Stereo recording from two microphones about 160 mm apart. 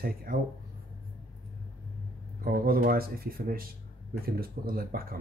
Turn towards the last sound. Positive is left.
turn(degrees=-70)  # may be behind; listen again after turning